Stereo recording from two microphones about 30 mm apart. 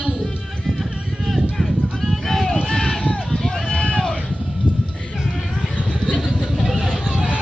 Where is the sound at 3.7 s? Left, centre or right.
Left.